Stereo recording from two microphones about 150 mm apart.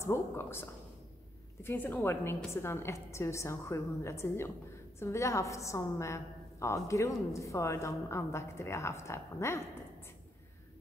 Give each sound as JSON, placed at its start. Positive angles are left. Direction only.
{"t": 0.0, "sound": "a woman's voice", "side_deg": 15}